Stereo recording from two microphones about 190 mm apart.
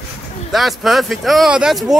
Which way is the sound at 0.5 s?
Centre (ahead or behind).